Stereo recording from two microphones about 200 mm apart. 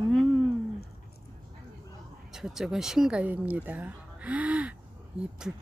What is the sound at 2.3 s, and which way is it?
Speech, centre (ahead or behind).